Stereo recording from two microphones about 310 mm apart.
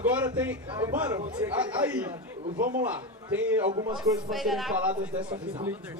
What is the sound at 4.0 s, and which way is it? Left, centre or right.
A man's voice, centre.